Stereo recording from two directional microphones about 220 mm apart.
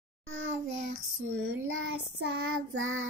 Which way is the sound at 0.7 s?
60° right (ahead or behind).